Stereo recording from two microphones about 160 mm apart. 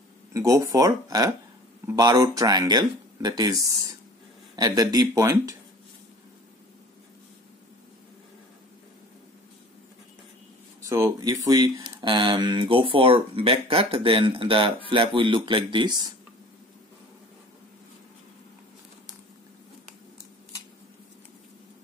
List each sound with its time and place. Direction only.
0.3 s speech: 20° right (ahead or behind)
10.9 s speech: 20° right (ahead or behind)